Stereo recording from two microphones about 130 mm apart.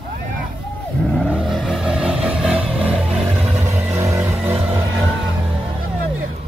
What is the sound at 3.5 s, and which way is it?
Vehicle, 25° right (ahead or behind).